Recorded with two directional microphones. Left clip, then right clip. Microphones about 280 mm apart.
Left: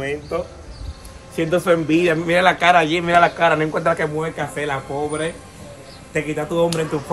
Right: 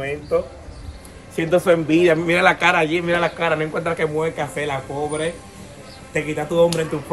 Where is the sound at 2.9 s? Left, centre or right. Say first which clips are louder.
Left 5 dB; left.